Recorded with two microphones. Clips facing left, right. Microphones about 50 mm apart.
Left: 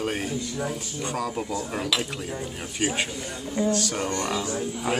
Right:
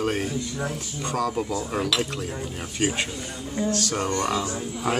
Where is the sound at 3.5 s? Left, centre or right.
Centre.